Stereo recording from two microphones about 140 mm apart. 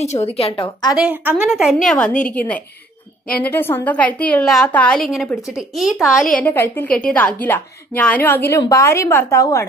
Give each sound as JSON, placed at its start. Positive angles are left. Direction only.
{"t": 0.0, "sound": "a woman's voice", "side_deg": 50}
{"t": 0.9, "sound": "a woman's voice", "side_deg": -5}
{"t": 6.3, "sound": "a woman's voice", "side_deg": 15}